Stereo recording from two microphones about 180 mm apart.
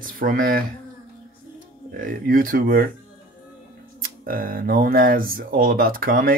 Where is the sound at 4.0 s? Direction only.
50° right (ahead or behind).